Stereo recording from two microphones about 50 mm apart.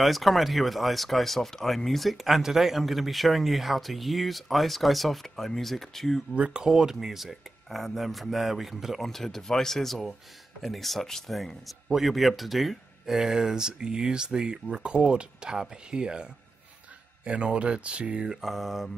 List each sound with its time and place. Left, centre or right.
0.0 s speech: centre
6.3 s speech: right
6.7 s speech: centre